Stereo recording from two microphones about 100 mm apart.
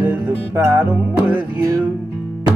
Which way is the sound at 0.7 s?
15° right (ahead or behind).